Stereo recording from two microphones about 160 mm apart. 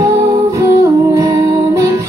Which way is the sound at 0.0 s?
20° right (ahead or behind).